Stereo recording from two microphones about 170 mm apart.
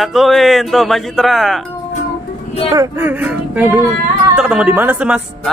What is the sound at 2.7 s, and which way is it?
Speech, 15° right (ahead or behind).